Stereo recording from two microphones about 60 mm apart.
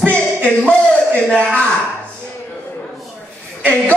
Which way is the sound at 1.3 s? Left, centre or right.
Left.